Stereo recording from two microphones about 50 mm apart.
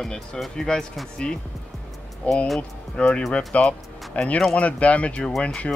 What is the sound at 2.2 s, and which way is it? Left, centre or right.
Speech, left.